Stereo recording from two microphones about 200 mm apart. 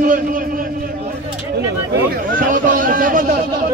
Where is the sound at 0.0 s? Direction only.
40° right (ahead or behind).